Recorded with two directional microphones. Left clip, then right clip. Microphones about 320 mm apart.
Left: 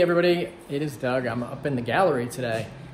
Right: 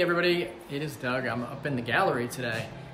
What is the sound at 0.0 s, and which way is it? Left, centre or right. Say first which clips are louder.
Speech: left 4 dB; centre.